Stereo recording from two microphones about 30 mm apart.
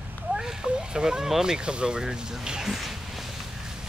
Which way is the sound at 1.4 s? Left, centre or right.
Right.